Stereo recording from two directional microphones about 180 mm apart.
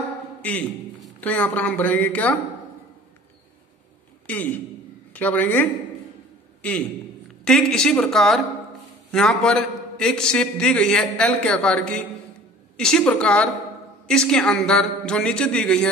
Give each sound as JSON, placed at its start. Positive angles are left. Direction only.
{"t": 0.4, "sound": "a man's voice", "side_deg": 10}
{"t": 4.3, "sound": "a man's voice", "side_deg": 10}
{"t": 7.4, "sound": "a man's voice", "side_deg": 5}